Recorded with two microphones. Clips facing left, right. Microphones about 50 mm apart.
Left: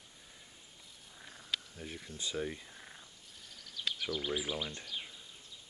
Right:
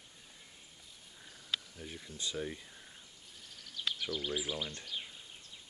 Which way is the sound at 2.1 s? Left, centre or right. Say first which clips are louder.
Left 1 dB; centre.